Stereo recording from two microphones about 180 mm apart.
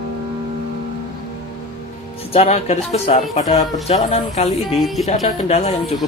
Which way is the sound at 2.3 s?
35° left (ahead or behind).